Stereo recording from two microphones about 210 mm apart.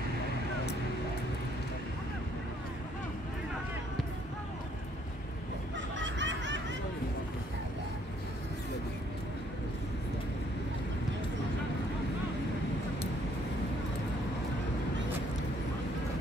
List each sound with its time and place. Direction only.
5.9 s baby laughter: 60° right (ahead or behind)